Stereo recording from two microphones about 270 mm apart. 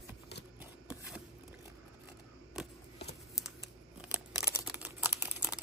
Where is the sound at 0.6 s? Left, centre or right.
Centre.